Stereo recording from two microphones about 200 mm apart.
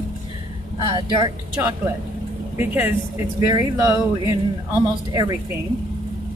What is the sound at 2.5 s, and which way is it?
Speech, 10° right (ahead or behind).